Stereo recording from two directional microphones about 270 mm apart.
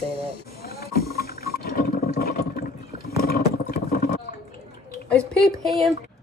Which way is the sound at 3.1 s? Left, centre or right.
Left.